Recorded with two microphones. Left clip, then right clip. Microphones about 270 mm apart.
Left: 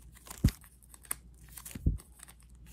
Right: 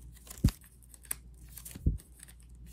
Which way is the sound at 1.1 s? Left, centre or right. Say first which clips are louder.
Left 1 dB; centre.